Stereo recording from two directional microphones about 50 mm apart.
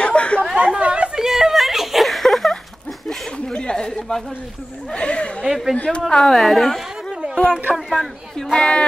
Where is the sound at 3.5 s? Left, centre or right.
Centre.